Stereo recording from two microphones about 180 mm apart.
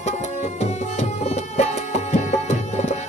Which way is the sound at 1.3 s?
40° left (ahead or behind).